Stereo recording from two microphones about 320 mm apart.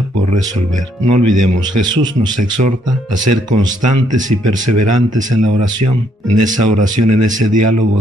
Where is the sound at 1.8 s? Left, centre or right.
Centre.